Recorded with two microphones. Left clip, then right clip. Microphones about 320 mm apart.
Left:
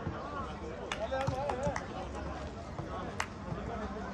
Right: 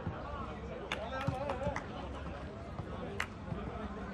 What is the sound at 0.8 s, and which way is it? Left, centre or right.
Basketball bounce, left.